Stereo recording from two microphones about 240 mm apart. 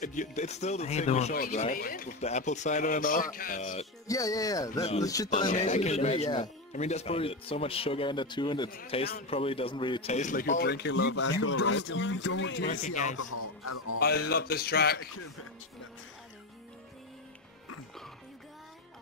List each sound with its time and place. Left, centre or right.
0.0 s speech: left
4.1 s speech: centre
5.3 s speech: left
10.5 s speech: left
11.4 s speech: left
12.6 s speech: left
13.2 s speech: left
13.9 s speech: left